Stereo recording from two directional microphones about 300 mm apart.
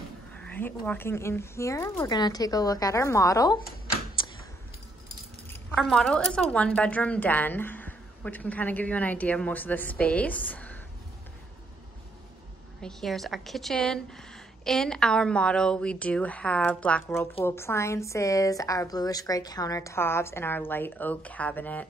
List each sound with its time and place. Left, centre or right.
0.4 s a woman's voice: centre
4.2 s a sound: centre
5.5 s a woman's voice: centre
12.8 s a woman's voice: centre